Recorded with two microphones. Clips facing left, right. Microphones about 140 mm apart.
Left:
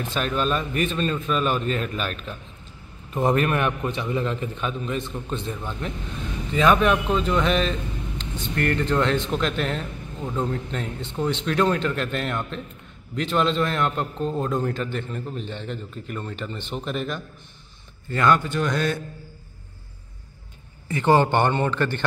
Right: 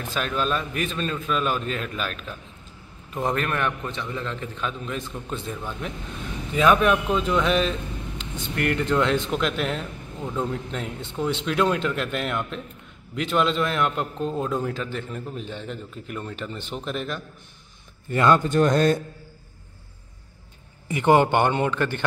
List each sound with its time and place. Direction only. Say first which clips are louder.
0.1 s a man's voice: left 1 dB; centre (ahead or behind)
18.1 s speech: right 1 dB; 25° right (ahead or behind)
18.4 s speech: right 5 dB; 40° right (ahead or behind)
20.9 s a man's voice: right 1 dB; 15° right (ahead or behind)